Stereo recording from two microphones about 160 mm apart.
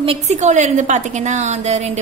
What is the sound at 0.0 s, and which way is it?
A woman's voice, 40° right (ahead or behind).